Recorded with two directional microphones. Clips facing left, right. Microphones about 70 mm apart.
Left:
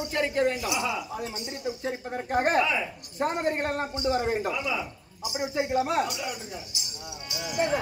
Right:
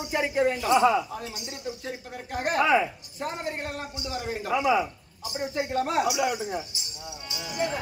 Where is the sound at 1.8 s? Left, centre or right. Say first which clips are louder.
Left 5 dB; left.